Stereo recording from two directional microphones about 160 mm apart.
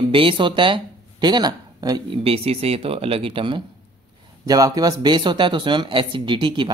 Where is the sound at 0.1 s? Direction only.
35° right (ahead or behind).